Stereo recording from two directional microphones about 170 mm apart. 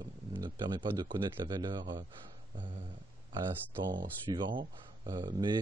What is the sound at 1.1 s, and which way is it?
Speech, 25° right (ahead or behind).